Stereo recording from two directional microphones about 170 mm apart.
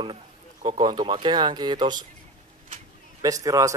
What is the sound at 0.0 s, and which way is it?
Speech, 30° right (ahead or behind).